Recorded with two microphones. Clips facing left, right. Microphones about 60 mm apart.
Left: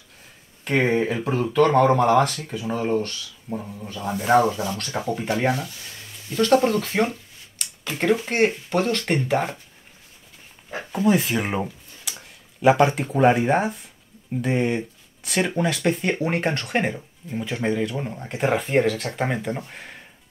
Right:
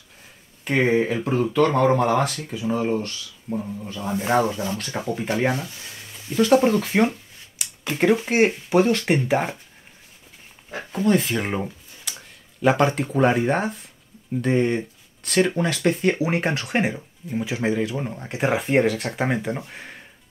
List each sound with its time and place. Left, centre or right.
0.7 s speech: centre
5.5 s speech: right
6.3 s speech: centre
7.5 s a sound: centre
8.3 s speech: centre
10.9 s speech: centre